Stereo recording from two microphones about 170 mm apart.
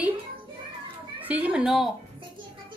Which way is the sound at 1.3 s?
10° right (ahead or behind).